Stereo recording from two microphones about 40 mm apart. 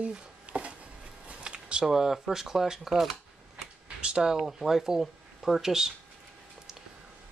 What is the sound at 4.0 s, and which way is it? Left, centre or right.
Speech, centre.